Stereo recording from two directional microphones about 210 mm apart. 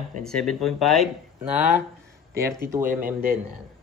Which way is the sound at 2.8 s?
45° right (ahead or behind).